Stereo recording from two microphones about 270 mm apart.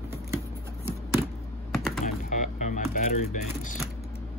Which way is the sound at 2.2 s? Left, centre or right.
Left.